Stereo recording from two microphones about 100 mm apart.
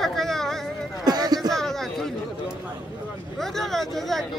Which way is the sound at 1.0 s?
45° right (ahead or behind).